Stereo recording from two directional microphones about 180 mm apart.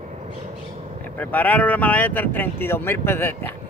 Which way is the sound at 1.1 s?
10° left (ahead or behind).